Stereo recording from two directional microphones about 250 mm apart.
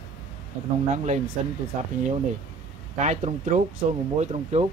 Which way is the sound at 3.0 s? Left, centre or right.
Right.